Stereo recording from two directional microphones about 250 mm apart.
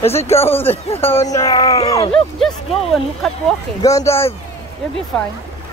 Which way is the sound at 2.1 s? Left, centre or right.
Centre.